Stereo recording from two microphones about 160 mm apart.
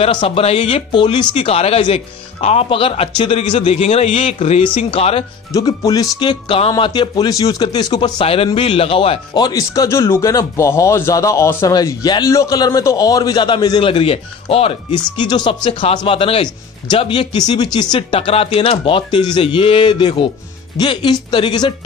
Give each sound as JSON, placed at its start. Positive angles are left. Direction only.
{"t": 0.0, "sound": "a man's voice", "side_deg": 35}
{"t": 5.5, "sound": "a man's voice", "side_deg": 20}